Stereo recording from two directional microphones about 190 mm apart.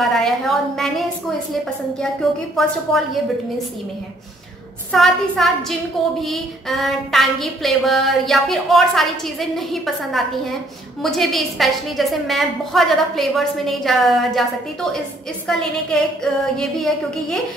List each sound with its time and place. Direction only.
0.0 s a woman's voice: centre (ahead or behind)
2.5 s a woman's voice: centre (ahead or behind)
4.9 s a woman's voice: centre (ahead or behind)